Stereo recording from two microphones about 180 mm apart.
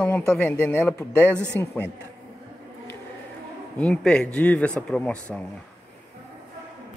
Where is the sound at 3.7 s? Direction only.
5° left (ahead or behind).